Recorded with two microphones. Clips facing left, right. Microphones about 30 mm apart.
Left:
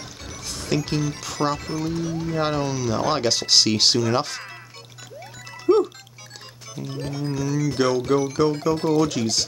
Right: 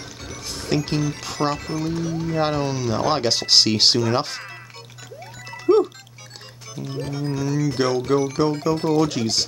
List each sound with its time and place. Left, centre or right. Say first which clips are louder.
0.4 s speech: right 1 dB; centre
1.6 s speech: right 1 dB; centre
5.5 s music: right 1 dB; centre
6.7 s speech: right 2 dB; centre
7.3 s speech: even; centre
9.1 s speech: right 1 dB; centre